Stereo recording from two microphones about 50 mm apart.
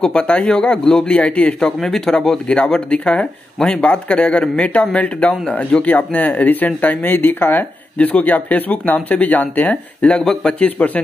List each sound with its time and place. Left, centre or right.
0.0 s a man's voice: centre
1.6 s a man's voice: centre
2.4 s speech: left
10.0 s speech: centre